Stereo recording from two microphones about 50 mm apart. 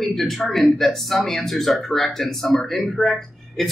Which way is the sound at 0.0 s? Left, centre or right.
Centre.